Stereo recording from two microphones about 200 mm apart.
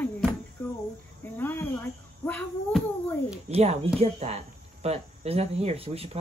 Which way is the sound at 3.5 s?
30° right (ahead or behind).